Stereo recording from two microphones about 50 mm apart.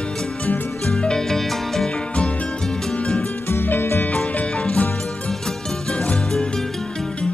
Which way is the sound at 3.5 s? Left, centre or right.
Left.